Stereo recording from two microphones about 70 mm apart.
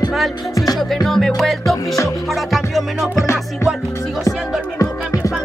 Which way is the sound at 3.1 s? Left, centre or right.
Left.